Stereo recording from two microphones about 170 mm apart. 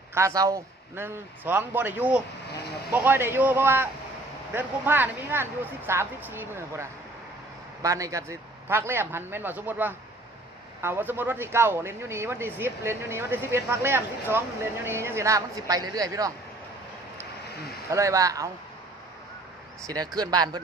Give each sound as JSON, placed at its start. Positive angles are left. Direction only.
{"t": 0.1, "sound": "speech", "side_deg": -20}
{"t": 17.8, "sound": "speech", "side_deg": -20}
{"t": 19.9, "sound": "speech", "side_deg": -20}